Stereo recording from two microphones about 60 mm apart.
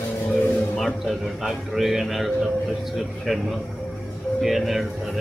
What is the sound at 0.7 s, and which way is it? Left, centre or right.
Speech, centre.